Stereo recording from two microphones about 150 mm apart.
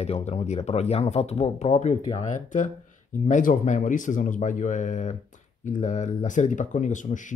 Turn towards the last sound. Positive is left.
turn(degrees=60)  # may be behind; listen again after turning